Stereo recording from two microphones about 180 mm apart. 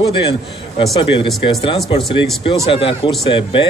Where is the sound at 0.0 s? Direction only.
30° left (ahead or behind).